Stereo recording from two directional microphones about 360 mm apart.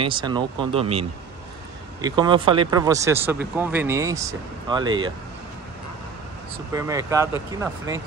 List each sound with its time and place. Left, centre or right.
0.0 s speech: centre
4.8 s speech: right
6.7 s speech: centre